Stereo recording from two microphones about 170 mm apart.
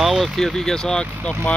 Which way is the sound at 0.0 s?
Centre (ahead or behind).